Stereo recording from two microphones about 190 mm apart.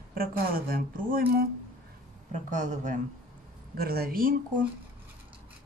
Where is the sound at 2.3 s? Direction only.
40° right (ahead or behind).